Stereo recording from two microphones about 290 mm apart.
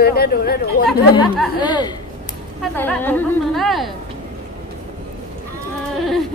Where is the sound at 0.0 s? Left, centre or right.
Left.